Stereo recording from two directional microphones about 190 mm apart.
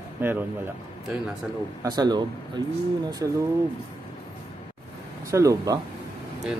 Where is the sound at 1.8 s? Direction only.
20° right (ahead or behind).